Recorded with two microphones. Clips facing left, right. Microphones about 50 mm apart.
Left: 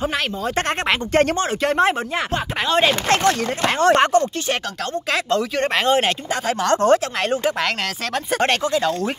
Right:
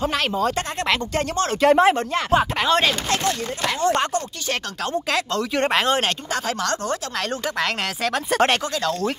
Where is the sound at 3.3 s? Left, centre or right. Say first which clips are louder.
Left 5 dB; left.